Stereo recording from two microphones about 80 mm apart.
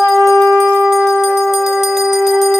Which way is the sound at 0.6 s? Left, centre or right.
Right.